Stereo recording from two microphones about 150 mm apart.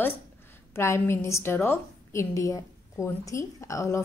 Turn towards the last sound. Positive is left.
turn(degrees=20)  # may be behind; listen again after turning